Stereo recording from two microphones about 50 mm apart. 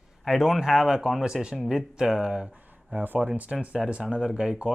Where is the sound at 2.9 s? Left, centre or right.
Right; by 4.7 s centre.